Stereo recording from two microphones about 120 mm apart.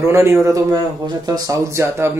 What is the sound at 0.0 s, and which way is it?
Speech, 20° right (ahead or behind).